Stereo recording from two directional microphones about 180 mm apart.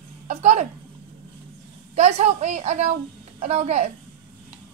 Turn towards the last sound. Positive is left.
turn(degrees=-40)  # may be behind; listen again after turning